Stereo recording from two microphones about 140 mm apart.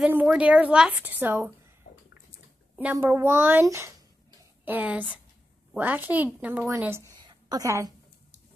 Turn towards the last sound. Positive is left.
turn(degrees=-25)  # may be behind; listen again after turning